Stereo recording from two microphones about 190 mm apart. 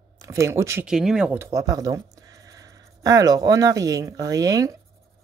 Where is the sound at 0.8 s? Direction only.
5° right (ahead or behind).